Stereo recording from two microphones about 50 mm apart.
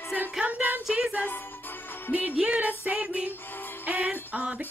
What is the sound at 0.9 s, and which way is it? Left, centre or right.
Music, centre.